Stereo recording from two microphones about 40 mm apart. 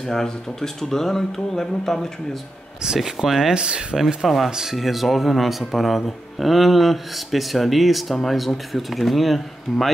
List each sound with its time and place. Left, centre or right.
0.0 s speech: centre
3.0 s speech: centre
3.5 s speech: right
4.2 s speech: centre
4.5 s speech: centre
4.7 s speech: centre